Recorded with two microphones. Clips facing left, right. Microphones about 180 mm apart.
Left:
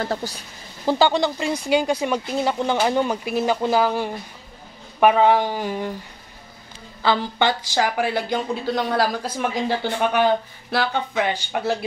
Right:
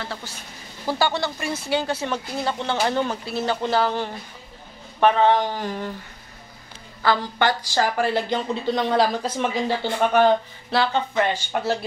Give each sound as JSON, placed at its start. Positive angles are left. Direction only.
{"t": 0.0, "sound": "speech", "side_deg": 40}
{"t": 0.8, "sound": "speech", "side_deg": 15}
{"t": 7.0, "sound": "speech", "side_deg": 20}